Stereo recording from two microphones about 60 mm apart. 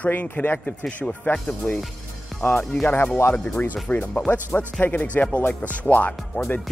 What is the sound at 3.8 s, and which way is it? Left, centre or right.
Speech, left.